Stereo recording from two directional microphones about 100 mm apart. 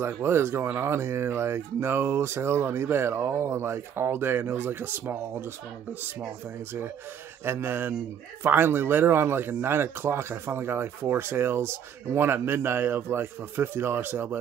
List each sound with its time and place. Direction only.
0.0 s speech: 25° right (ahead or behind)
7.4 s speech: 25° right (ahead or behind)